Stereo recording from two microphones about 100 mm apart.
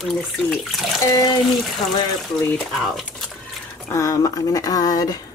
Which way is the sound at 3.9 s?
35° left (ahead or behind).